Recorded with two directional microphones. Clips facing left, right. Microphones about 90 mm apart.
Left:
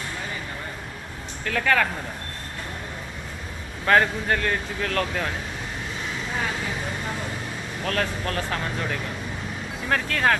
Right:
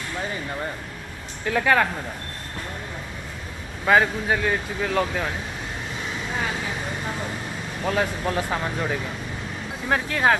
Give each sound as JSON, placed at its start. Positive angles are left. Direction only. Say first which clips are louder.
{"t": 1.4, "sound": "speech", "louder": "right 2 dB", "side_deg": -15}
{"t": 3.8, "sound": "speech", "louder": "right 1 dB", "side_deg": -5}
{"t": 7.8, "sound": "speech", "louder": "right 3 dB", "side_deg": -10}